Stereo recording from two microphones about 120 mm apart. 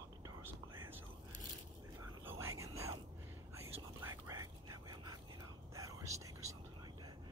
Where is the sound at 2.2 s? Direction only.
20° right (ahead or behind).